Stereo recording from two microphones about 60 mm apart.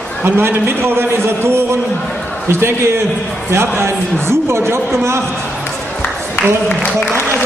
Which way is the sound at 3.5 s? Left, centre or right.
Right.